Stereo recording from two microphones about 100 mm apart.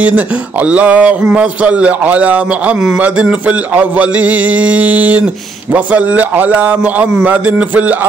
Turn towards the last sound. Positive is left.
turn(degrees=-15)  # may be behind; listen again after turning